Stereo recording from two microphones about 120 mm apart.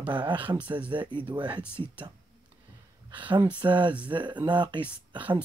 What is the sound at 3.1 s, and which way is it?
Speech, 40° right (ahead or behind).